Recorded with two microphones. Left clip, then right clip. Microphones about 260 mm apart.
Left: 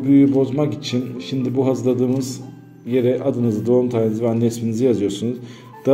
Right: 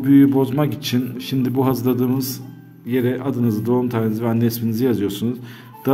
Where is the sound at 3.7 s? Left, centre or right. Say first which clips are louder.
Left 5 dB; right.